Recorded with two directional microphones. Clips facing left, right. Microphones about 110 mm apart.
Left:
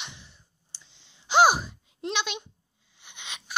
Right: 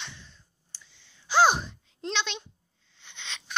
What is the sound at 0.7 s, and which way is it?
Gasp, 20° left (ahead or behind).